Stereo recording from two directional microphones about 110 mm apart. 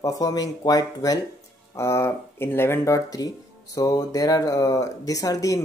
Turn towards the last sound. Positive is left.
turn(degrees=30)  # may be behind; listen again after turning